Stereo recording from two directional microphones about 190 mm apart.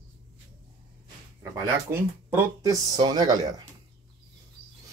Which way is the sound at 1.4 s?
15° right (ahead or behind).